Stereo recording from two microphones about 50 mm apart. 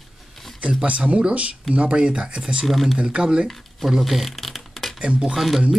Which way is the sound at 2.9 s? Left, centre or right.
Centre.